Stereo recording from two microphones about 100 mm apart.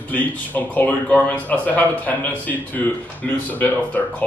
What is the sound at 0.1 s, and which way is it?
Speech, 15° left (ahead or behind).